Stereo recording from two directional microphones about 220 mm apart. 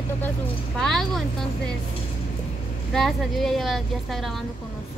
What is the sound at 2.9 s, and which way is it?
A woman's voice, centre (ahead or behind).